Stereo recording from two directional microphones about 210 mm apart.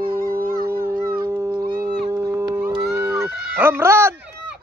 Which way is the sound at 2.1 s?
15° right (ahead or behind).